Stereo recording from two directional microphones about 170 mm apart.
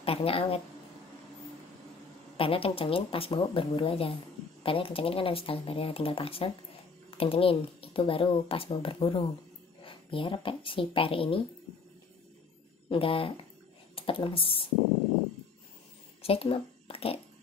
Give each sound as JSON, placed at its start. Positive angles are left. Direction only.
{"t": 0.0, "sound": "speech", "side_deg": 35}
{"t": 2.3, "sound": "speech", "side_deg": 30}
{"t": 12.9, "sound": "speech", "side_deg": 30}
{"t": 16.2, "sound": "speech", "side_deg": 35}